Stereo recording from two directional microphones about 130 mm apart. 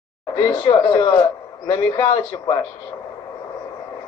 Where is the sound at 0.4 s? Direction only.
30° left (ahead or behind).